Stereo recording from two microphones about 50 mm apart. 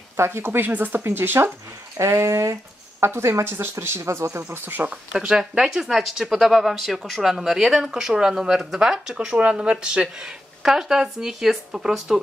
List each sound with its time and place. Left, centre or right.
0.2 s speech: right
0.7 s speech: right
2.0 s a woman's voice: right
4.5 s speech: right
5.1 s speech: centre